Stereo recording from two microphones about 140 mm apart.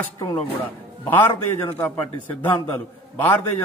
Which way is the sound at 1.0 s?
15° left (ahead or behind).